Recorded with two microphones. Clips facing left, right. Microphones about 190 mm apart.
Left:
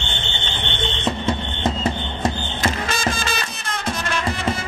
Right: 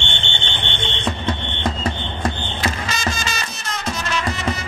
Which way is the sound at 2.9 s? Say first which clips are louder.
Left 2 dB; 55° left (ahead or behind).